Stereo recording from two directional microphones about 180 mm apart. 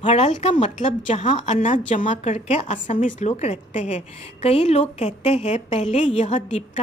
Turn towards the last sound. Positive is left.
turn(degrees=40)  # may be behind; listen again after turning